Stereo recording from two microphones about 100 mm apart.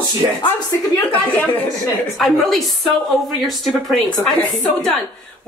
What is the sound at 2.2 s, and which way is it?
Speech, centre (ahead or behind).